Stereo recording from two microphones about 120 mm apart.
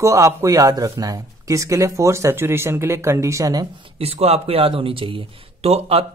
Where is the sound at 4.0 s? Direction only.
60° right (ahead or behind).